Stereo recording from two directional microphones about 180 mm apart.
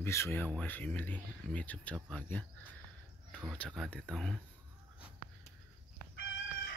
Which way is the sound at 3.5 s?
Centre (ahead or behind).